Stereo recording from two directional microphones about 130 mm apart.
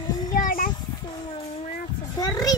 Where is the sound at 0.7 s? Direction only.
35° left (ahead or behind).